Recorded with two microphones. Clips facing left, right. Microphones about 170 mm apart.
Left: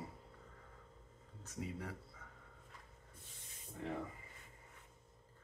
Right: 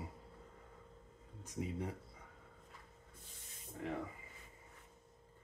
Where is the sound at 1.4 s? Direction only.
20° right (ahead or behind).